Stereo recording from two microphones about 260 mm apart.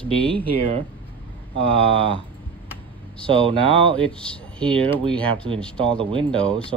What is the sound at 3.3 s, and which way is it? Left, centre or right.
Speech, centre.